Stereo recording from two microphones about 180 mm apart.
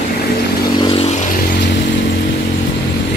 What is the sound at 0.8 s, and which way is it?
Vehicle, 30° left (ahead or behind).